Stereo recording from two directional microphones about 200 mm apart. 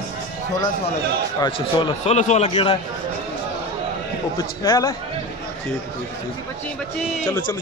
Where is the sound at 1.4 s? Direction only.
25° left (ahead or behind).